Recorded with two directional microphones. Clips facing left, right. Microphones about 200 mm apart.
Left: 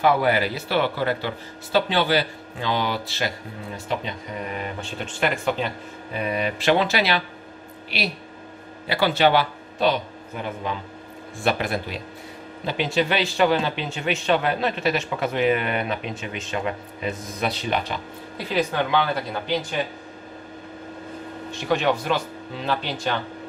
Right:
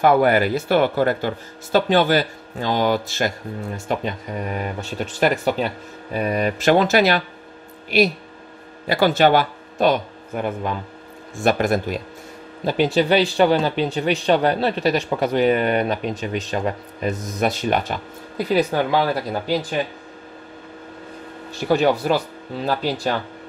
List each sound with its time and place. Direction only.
0.0 s speech: 50° right (ahead or behind)
13.4 s speech: 35° right (ahead or behind)
21.5 s speech: 35° right (ahead or behind)